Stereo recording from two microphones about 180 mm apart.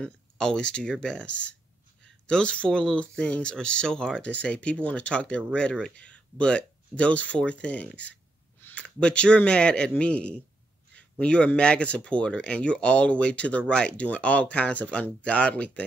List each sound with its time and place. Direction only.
0.0 s speech: 5° left (ahead or behind)